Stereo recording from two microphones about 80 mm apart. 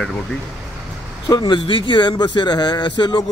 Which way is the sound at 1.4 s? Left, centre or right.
Left.